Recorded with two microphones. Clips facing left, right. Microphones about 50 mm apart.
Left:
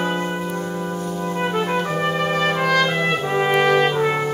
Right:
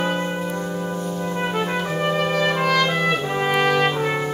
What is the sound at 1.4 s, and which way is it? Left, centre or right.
Trumpet, centre.